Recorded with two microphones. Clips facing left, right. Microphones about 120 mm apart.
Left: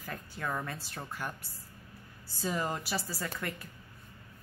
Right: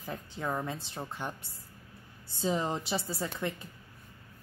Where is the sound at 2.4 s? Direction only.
20° right (ahead or behind).